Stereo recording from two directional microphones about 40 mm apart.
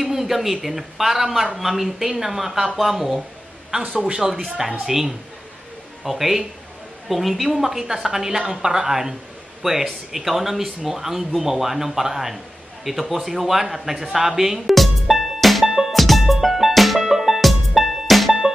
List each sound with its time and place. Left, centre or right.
0.0 s a man's voice: centre
4.0 s speech: centre
4.4 s a man's voice: centre
14.7 s music: centre